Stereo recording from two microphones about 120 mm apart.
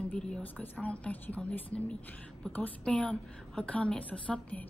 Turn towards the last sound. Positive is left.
turn(degrees=10)  # may be behind; listen again after turning